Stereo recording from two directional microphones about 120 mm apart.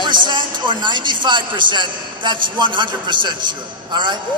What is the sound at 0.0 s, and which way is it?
Speech, 40° right (ahead or behind).